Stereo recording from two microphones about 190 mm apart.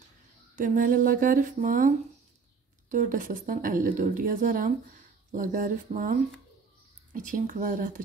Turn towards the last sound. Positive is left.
turn(degrees=-45)  # may be behind; listen again after turning